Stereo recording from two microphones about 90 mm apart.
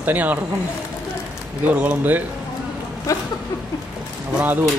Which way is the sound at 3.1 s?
35° left (ahead or behind).